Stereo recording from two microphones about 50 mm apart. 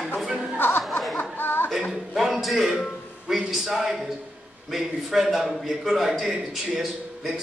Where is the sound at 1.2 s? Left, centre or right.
Left.